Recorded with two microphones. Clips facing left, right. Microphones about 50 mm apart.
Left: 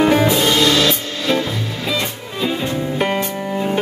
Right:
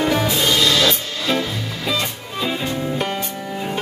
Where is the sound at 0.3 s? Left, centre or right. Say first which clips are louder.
Left 3 dB; left.